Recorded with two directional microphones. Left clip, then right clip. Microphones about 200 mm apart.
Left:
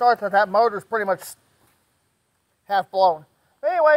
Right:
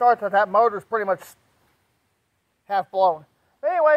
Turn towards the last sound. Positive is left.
turn(degrees=20)  # may be behind; listen again after turning